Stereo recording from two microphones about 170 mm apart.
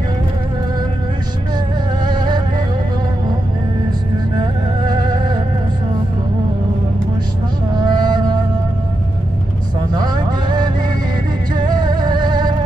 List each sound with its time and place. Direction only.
2.0 s a sound: 25° right (ahead or behind)
4.4 s music: 25° right (ahead or behind)
7.7 s music: 25° right (ahead or behind)
9.9 s vehicle: 25° right (ahead or behind)
11.5 s music: 25° right (ahead or behind)